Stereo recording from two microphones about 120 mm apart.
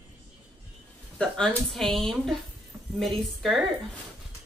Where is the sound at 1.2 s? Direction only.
10° left (ahead or behind).